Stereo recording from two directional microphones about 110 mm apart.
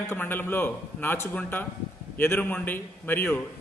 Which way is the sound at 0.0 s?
20° left (ahead or behind).